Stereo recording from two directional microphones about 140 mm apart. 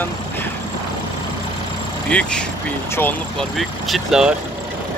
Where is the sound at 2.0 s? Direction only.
10° left (ahead or behind).